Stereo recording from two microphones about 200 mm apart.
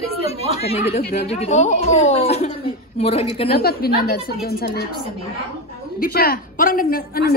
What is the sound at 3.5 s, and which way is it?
A woman's voice, 50° left (ahead or behind).